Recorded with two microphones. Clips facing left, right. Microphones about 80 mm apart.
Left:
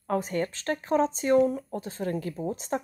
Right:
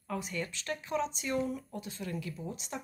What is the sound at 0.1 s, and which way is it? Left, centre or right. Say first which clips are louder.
A woman's voice: left 9 dB; left.